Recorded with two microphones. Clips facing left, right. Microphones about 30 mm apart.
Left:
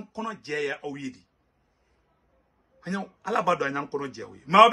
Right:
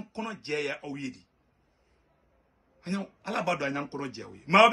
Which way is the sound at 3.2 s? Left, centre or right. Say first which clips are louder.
Left 6 dB; right.